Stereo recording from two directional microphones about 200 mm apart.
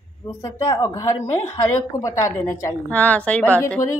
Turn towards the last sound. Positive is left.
turn(degrees=10)  # may be behind; listen again after turning